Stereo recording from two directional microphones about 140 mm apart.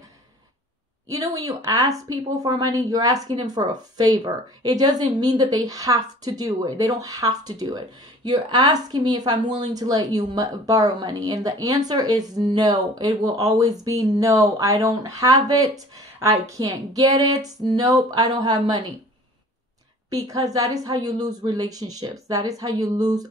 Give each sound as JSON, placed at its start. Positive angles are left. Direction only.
{"t": 1.0, "sound": "speech", "side_deg": -25}
{"t": 20.1, "sound": "speech", "side_deg": -25}